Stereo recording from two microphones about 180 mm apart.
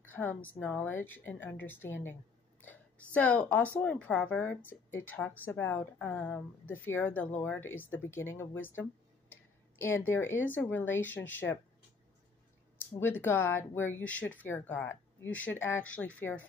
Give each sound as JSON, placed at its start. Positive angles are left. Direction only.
{"t": 0.1, "sound": "speech", "side_deg": 10}
{"t": 2.6, "sound": "a sound", "side_deg": 10}
{"t": 3.2, "sound": "speech", "side_deg": 10}
{"t": 13.0, "sound": "speech", "side_deg": 10}